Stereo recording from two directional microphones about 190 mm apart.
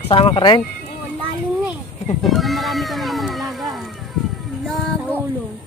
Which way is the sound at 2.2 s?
Centre (ahead or behind).